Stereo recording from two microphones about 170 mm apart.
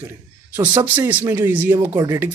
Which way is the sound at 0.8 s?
10° right (ahead or behind).